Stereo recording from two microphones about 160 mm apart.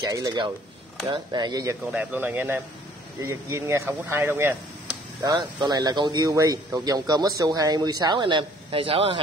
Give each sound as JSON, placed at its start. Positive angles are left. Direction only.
{"t": 0.0, "sound": "speech", "side_deg": -25}
{"t": 1.9, "sound": "speech", "side_deg": -10}
{"t": 4.8, "sound": "speech", "side_deg": -25}